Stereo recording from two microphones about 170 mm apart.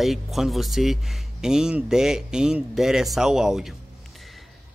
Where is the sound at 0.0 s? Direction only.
Centre (ahead or behind).